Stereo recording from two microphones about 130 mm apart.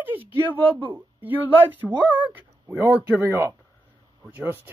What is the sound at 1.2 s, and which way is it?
Speech, 15° right (ahead or behind).